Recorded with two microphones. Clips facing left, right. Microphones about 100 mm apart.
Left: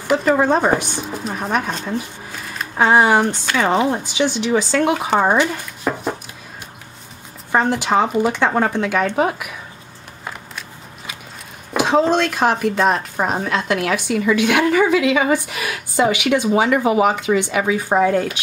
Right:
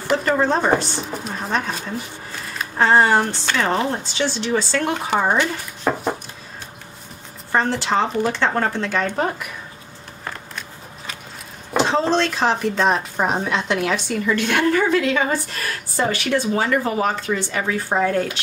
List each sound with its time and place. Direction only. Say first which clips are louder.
0.1 s a woman's voice: left 3 dB; 5° left (ahead or behind)
2.6 s a woman's voice: left 2 dB; 10° left (ahead or behind)
5.9 s a sound: right 1 dB; 5° right (ahead or behind)
7.5 s a woman's voice: left 3 dB; 15° left (ahead or behind)
11.7 s a woman's voice: left 3 dB; 10° left (ahead or behind)